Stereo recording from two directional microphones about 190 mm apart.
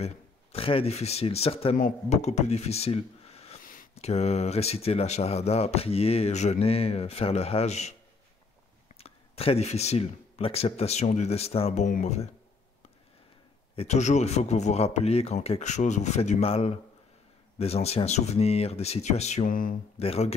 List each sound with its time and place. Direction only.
0.0 s speech: 30° left (ahead or behind)
3.6 s a sound: 45° left (ahead or behind)
3.9 s speech: 35° left (ahead or behind)
8.9 s speech: 30° left (ahead or behind)
13.7 s speech: 35° left (ahead or behind)
20.0 s speech: 30° left (ahead or behind)